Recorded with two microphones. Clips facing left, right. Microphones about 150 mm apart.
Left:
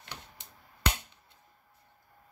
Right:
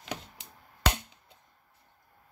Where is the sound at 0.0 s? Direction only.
90° right.